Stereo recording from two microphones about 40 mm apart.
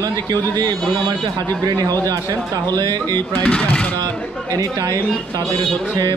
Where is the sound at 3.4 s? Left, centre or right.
Left.